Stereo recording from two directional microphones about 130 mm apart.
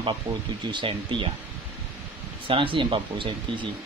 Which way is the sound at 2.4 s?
40° right (ahead or behind).